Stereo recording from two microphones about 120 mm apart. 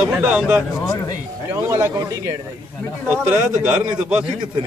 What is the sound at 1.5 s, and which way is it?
Speech, 25° right (ahead or behind).